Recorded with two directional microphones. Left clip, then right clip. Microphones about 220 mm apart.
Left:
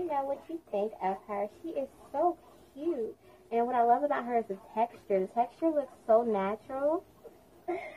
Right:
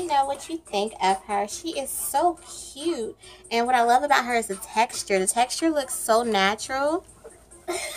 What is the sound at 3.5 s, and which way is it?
A woman's voice, 20° right (ahead or behind).